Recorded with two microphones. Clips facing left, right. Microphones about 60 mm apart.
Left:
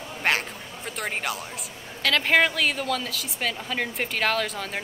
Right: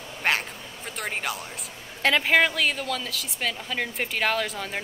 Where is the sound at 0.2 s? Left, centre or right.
Centre.